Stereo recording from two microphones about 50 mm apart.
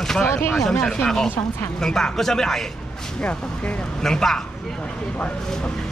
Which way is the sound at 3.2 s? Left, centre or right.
Left.